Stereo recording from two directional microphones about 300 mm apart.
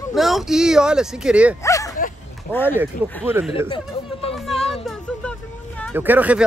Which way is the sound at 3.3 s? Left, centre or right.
Centre.